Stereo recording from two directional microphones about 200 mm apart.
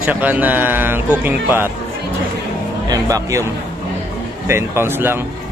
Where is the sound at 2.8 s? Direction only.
20° right (ahead or behind).